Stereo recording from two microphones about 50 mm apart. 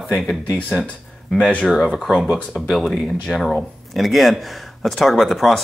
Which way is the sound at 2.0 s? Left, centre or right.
Centre.